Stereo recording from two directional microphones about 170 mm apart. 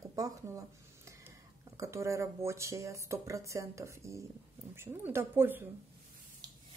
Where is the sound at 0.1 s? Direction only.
20° right (ahead or behind).